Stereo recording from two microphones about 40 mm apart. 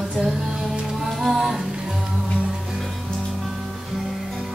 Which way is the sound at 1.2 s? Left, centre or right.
Centre.